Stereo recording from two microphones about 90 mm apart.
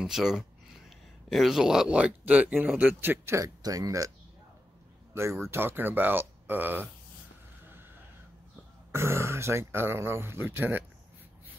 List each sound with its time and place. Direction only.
0.0 s speech: 5° right (ahead or behind); by 3.3 s 25° right (ahead or behind)
3.3 s speech: 40° right (ahead or behind)
5.4 s speech: 25° right (ahead or behind)
8.9 s speech: 30° right (ahead or behind)